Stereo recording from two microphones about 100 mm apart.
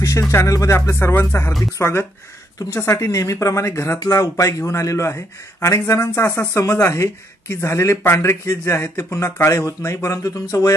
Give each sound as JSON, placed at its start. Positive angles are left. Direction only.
{"t": 0.3, "sound": "speech", "side_deg": 30}